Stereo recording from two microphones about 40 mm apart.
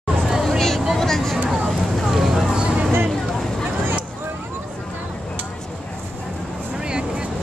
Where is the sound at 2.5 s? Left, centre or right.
Right.